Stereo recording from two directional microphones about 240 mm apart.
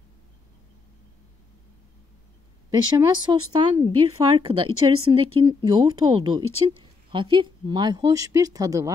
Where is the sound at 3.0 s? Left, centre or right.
Centre.